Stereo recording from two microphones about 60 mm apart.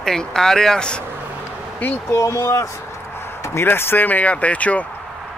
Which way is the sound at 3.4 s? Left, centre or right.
Left.